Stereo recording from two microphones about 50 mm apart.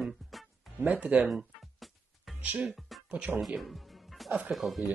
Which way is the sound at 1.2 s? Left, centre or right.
Centre.